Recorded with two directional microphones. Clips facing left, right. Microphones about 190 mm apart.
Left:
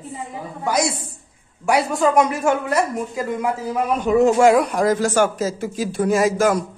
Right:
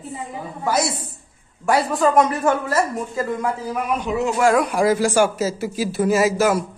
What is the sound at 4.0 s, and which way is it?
Speech, 45° left (ahead or behind).